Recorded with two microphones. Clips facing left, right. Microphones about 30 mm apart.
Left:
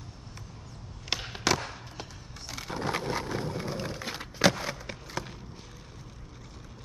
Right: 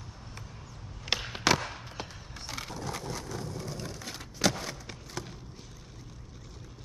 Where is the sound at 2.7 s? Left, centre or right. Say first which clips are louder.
Left 10 dB; left; by 5.3 s centre.